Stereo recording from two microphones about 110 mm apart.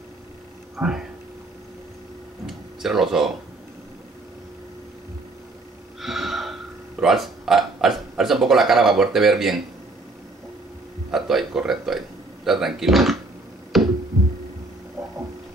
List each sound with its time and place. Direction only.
0.7 s speech: 5° right (ahead or behind)
2.4 s a sound: centre (ahead or behind)
5.9 s gasp: centre (ahead or behind)
7.0 s speech: centre (ahead or behind)
11.1 s speech: 5° right (ahead or behind)
13.7 s music: centre (ahead or behind)
15.0 s a sound: 30° right (ahead or behind)